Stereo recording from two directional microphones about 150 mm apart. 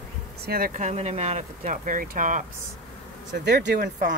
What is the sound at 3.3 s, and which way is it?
Speech, 70° right (ahead or behind).